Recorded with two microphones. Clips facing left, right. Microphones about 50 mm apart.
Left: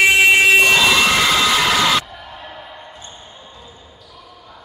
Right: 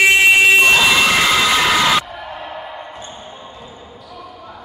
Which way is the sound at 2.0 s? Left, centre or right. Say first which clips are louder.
Right 6 dB; right.